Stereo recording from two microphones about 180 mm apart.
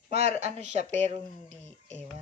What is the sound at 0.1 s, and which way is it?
Speech, 35° right (ahead or behind).